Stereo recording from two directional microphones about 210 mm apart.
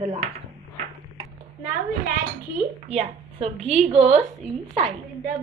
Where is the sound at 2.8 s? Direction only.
30° right (ahead or behind).